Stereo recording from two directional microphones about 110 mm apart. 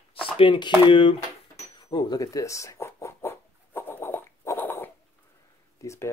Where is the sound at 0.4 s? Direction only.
50° left (ahead or behind).